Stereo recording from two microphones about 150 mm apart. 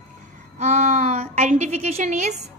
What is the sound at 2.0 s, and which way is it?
Speech, 50° right (ahead or behind).